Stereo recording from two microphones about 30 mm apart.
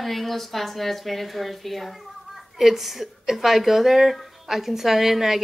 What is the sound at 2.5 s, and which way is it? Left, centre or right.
Speech, centre.